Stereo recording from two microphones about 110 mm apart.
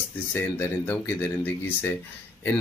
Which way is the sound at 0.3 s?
20° left (ahead or behind).